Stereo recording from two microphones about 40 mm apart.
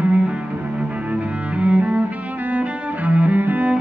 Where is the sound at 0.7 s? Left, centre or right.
Right.